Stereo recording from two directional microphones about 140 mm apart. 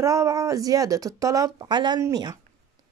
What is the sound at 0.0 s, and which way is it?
Speech, 20° right (ahead or behind).